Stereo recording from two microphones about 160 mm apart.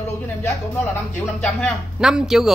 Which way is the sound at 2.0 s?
5° right (ahead or behind).